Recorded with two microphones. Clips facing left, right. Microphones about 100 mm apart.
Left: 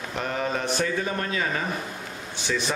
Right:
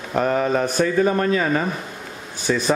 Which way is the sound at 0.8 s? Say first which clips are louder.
Right 8 dB; 45° right (ahead or behind).